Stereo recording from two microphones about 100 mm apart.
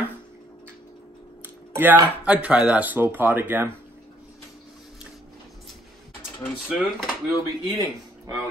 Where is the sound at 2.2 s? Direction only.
10° right (ahead or behind).